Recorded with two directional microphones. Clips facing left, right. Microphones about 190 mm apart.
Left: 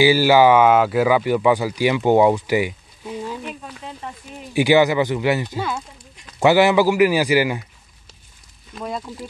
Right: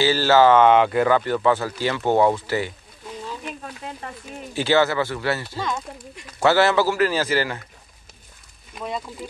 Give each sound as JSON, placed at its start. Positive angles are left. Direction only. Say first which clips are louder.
{"t": 0.0, "sound": "speech", "louder": "left 3 dB", "side_deg": 10}
{"t": 4.6, "sound": "speech", "louder": "left 4 dB", "side_deg": 15}
{"t": 8.8, "sound": "speech", "louder": "left 1 dB", "side_deg": 0}